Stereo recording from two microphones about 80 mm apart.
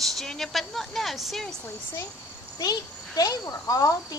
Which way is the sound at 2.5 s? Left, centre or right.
Left.